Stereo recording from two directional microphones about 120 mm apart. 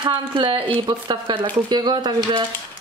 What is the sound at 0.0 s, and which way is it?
Speech, 45° right (ahead or behind).